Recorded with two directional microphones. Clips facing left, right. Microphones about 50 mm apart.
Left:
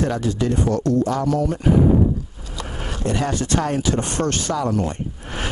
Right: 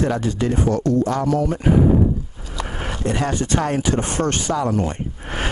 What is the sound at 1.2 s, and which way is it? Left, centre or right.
Speech, right.